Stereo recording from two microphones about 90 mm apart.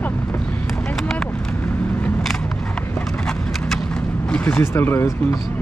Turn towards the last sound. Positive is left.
turn(degrees=25)  # may be behind; listen again after turning